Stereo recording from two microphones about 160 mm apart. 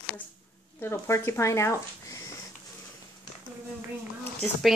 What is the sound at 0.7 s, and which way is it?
Speech, 15° left (ahead or behind).